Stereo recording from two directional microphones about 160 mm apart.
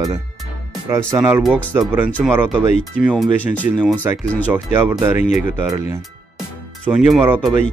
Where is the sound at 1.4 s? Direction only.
5° left (ahead or behind).